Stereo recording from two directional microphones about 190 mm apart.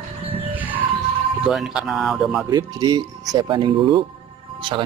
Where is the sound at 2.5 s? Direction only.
20° right (ahead or behind).